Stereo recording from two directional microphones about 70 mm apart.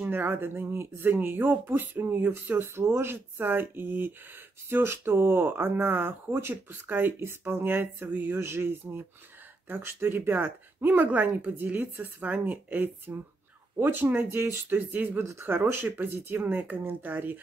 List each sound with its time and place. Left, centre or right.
0.0 s speech: right
2.6 s speech: right
14.9 s speech: right
15.1 s speech: right